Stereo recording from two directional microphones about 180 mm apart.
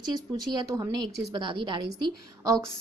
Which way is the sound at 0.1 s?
20° right (ahead or behind).